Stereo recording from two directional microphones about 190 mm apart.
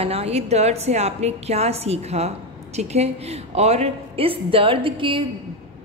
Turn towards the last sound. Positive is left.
turn(degrees=-25)  # may be behind; listen again after turning